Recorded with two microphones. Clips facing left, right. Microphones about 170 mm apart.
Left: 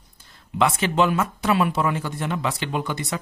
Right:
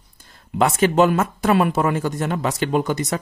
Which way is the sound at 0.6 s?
45° right (ahead or behind).